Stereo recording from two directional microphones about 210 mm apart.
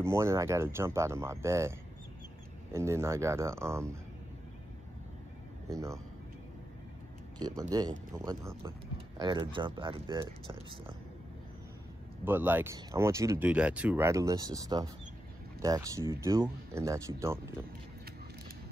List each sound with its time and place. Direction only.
0.0 s speech: 10° right (ahead or behind)
5.7 s speech: 15° right (ahead or behind)
7.3 s speech: 20° right (ahead or behind)
12.3 s speech: 10° right (ahead or behind)